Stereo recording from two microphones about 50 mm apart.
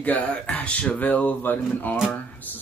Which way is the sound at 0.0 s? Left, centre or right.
Left.